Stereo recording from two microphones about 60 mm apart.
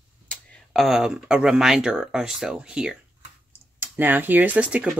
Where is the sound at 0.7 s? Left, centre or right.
Centre.